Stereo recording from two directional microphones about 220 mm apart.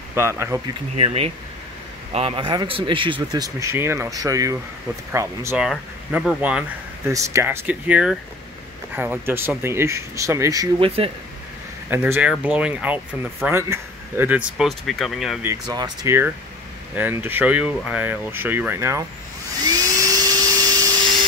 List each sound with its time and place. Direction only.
0.1 s speech: 10° right (ahead or behind)
0.9 s speech: 25° right (ahead or behind)
11.9 s speech: 10° right (ahead or behind)
15.4 s speech: 15° right (ahead or behind)
19.6 s vacuum cleaner: 15° right (ahead or behind)